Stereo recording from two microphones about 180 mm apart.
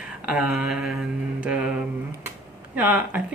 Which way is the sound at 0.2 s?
5° right (ahead or behind).